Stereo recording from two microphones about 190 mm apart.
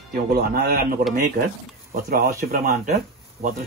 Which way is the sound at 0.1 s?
50° right (ahead or behind).